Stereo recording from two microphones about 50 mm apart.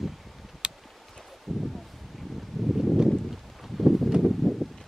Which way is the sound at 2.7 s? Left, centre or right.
Centre.